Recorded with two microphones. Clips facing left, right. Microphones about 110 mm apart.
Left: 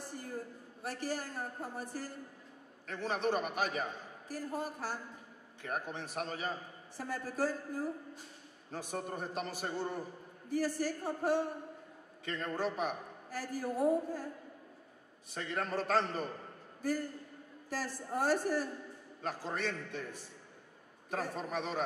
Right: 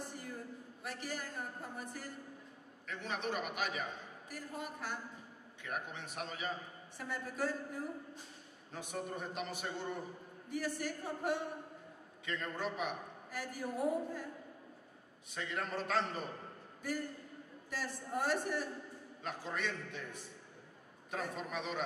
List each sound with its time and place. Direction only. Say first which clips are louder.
0.1 s a sound: left 3 dB; 35° left (ahead or behind)
0.8 s a man's voice: left 5 dB; 35° left (ahead or behind)
15.3 s a man's voice: left 3 dB; 40° left (ahead or behind)
17.6 s a man's voice: left 3 dB; 35° left (ahead or behind)